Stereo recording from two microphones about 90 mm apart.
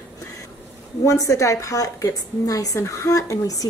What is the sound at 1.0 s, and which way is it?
A woman's voice, 35° left (ahead or behind).